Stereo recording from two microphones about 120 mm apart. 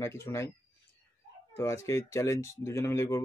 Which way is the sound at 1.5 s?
25° left (ahead or behind).